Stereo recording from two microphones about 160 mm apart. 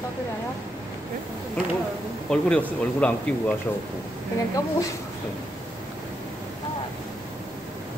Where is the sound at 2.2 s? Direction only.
5° left (ahead or behind).